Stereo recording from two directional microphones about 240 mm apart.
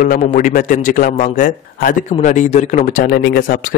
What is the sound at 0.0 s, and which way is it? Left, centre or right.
A man's voice, left.